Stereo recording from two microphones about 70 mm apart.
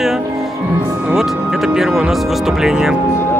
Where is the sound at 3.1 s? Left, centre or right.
Left.